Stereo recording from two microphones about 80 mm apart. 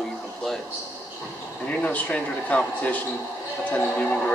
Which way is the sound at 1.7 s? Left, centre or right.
Centre.